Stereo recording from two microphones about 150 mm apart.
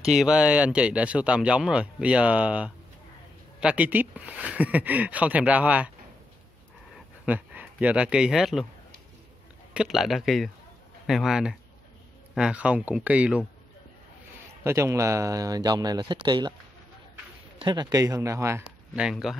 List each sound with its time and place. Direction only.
0.0 s speech: 5° right (ahead or behind)
7.2 s speech: 10° right (ahead or behind)
9.8 s speech: centre (ahead or behind)
14.6 s speech: 20° right (ahead or behind)
17.6 s speech: 30° right (ahead or behind)
18.9 s speech: 5° right (ahead or behind)